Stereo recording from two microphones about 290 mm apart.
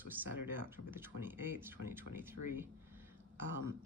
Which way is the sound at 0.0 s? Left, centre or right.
Centre.